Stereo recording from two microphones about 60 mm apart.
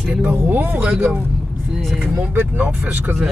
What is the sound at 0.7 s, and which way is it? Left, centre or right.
Speech, right.